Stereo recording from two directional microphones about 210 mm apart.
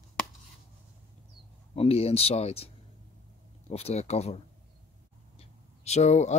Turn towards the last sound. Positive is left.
turn(degrees=35)  # may be behind; listen again after turning